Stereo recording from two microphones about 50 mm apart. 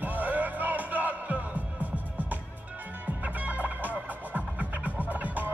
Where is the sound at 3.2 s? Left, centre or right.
Right.